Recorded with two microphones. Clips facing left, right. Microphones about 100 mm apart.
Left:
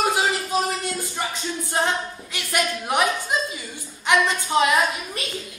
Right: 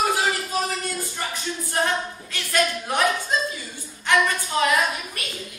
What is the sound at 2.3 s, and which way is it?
A woman's voice, 15° left (ahead or behind).